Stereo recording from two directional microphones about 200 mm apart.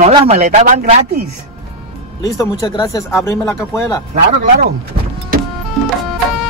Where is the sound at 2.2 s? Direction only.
15° left (ahead or behind).